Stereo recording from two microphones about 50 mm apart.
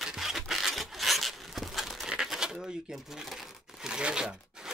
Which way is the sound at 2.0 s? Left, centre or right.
Centre.